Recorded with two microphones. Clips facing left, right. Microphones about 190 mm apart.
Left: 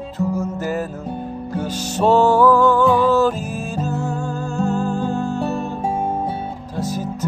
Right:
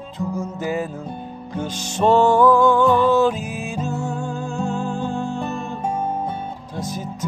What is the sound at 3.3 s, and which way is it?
Music, 45° left (ahead or behind).